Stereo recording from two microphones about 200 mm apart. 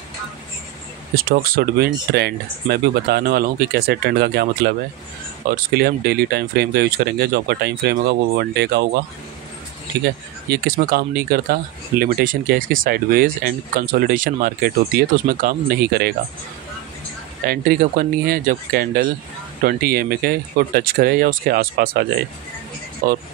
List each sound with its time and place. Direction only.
1.1 s speech: 45° right (ahead or behind)
10.5 s speech: 50° right (ahead or behind)
17.5 s speech: 45° right (ahead or behind)